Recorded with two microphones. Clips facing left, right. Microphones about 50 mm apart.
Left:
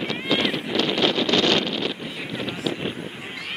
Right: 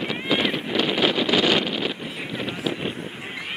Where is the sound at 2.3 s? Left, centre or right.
Centre.